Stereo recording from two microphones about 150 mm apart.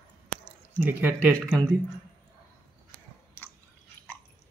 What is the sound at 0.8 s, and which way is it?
Speech, 15° right (ahead or behind).